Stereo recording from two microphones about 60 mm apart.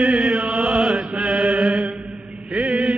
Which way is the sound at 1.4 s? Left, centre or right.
Right.